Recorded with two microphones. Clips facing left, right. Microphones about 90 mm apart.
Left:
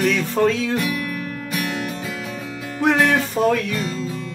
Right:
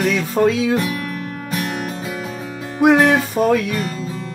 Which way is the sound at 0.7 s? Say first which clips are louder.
Right 2 dB; 30° right (ahead or behind).